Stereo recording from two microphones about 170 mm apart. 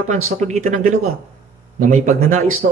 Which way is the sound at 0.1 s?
40° right (ahead or behind).